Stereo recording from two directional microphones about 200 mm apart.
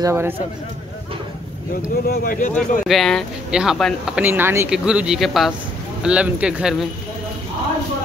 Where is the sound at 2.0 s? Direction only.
45° left (ahead or behind).